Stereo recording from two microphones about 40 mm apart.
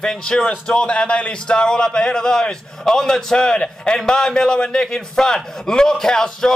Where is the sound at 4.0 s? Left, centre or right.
Centre.